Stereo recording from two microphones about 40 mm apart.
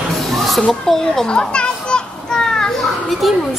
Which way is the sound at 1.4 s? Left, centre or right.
Left.